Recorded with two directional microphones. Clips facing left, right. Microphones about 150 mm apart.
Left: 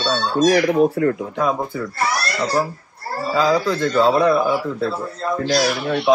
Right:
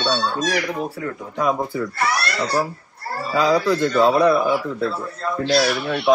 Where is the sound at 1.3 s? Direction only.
5° right (ahead or behind).